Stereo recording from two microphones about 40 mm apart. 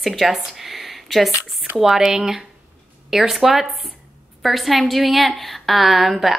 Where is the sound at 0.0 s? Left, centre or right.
Centre.